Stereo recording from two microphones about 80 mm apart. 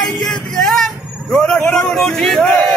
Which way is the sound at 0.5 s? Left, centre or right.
Centre.